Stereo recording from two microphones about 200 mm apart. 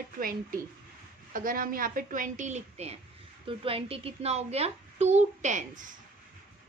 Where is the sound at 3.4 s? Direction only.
30° right (ahead or behind).